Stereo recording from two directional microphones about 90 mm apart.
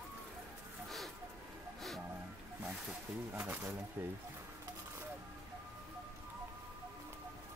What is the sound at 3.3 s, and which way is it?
Speech, 25° right (ahead or behind).